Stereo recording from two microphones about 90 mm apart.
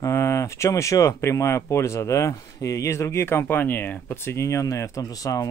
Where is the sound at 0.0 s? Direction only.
30° left (ahead or behind).